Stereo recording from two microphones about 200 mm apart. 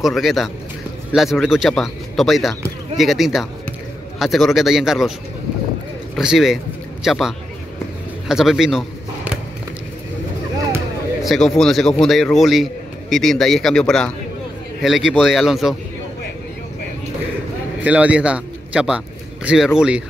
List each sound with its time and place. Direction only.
0.0 s speech: centre (ahead or behind)
6.1 s speech: centre (ahead or behind)
8.3 s a sound: centre (ahead or behind)
11.2 s speech: centre (ahead or behind)
17.8 s a man's voice: 5° right (ahead or behind)